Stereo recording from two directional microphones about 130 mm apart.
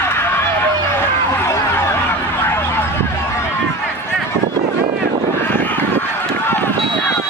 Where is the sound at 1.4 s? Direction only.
20° left (ahead or behind).